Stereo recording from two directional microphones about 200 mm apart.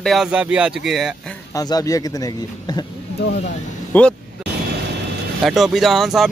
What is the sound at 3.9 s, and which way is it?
Speech, 10° left (ahead or behind).